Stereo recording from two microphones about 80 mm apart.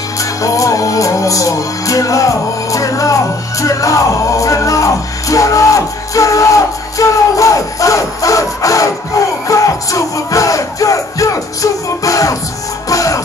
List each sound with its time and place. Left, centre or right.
0.2 s music: left